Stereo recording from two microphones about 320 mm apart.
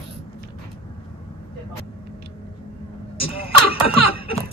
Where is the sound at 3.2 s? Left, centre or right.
Centre.